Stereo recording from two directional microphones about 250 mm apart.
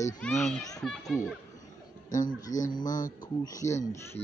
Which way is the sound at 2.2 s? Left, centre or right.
Left.